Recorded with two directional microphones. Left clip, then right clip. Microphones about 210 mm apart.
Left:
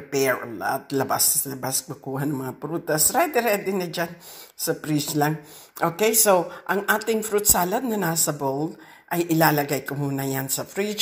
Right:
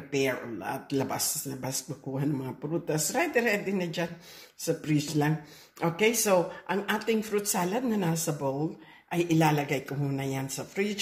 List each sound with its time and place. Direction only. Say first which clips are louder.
0.3 s a woman's voice: left 8 dB; 20° left (ahead or behind)